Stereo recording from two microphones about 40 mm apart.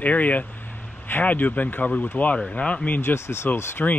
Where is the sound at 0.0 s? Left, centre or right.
Left.